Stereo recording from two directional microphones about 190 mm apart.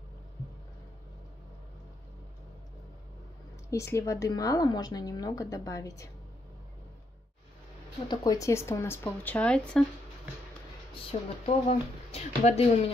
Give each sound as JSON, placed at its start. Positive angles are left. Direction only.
{"t": 3.7, "sound": "a woman's voice", "side_deg": 15}
{"t": 8.1, "sound": "a woman's voice", "side_deg": 20}
{"t": 11.1, "sound": "speech", "side_deg": 35}